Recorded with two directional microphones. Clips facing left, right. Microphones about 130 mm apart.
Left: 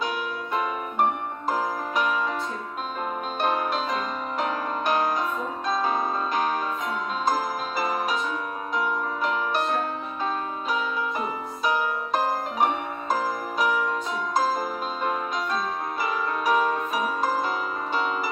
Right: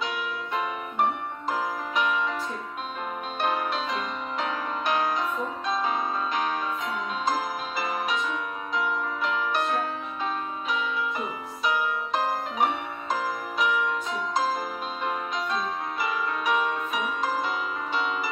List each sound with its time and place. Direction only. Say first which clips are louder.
0.0 s music: left 2 dB; 40° left (ahead or behind)
3.4 s music: left 2 dB; 40° left (ahead or behind)